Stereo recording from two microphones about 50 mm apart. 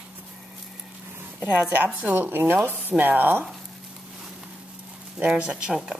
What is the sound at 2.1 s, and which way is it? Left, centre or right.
Speech, right.